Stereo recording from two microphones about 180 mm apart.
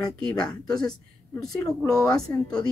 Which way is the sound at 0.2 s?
5° left (ahead or behind).